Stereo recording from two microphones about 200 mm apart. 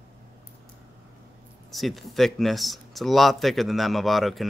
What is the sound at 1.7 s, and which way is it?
Speech, centre (ahead or behind).